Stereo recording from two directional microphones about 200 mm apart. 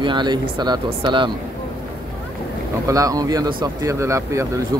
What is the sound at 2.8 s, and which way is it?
Speech, 15° right (ahead or behind).